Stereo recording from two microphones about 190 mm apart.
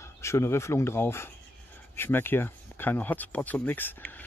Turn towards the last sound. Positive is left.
turn(degrees=10)  # may be behind; listen again after turning